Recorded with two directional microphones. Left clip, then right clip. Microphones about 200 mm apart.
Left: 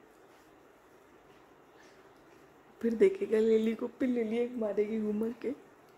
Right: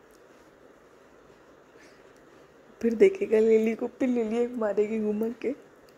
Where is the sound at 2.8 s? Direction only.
10° right (ahead or behind).